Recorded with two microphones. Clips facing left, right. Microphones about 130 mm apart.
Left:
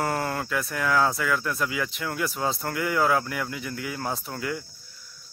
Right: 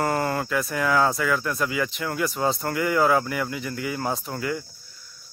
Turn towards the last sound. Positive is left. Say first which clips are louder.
# right 3 dB
turn(degrees=0)  # may be behind; listen again after turning